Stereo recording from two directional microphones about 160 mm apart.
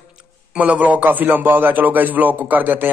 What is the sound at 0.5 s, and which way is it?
A man's voice, 10° right (ahead or behind).